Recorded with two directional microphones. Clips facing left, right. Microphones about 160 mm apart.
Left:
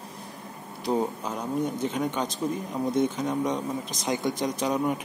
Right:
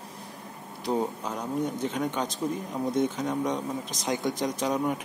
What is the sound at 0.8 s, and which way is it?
Speech, 10° left (ahead or behind).